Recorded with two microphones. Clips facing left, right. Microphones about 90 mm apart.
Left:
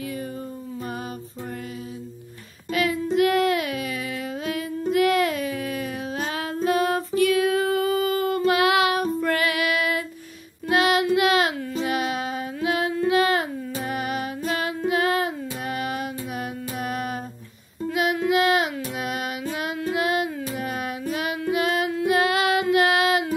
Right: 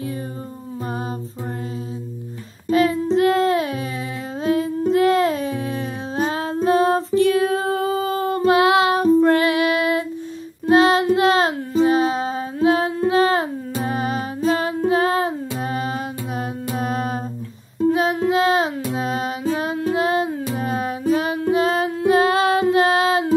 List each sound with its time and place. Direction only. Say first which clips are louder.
2.7 s child singing: right 6 dB; 30° right (ahead or behind)
4.4 s humming: right 12 dB; 30° right (ahead or behind)
10.7 s child singing: right 5 dB; 30° right (ahead or behind)